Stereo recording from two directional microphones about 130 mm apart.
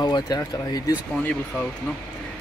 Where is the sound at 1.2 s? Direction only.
10° left (ahead or behind).